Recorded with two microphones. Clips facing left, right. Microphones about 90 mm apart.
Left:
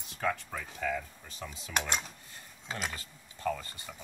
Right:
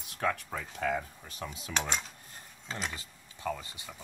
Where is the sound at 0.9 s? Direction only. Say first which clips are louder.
Right 3 dB; 45° right (ahead or behind).